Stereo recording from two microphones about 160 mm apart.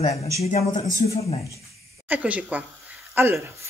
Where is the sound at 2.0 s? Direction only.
10° right (ahead or behind).